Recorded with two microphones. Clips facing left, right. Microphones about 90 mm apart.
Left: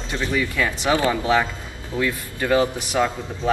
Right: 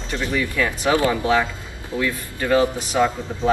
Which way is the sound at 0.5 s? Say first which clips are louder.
Right 3 dB; 20° left (ahead or behind).